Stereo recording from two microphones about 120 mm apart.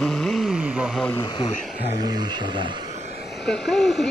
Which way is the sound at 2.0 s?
40° right (ahead or behind).